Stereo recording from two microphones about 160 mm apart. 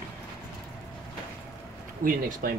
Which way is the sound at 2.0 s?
60° right (ahead or behind).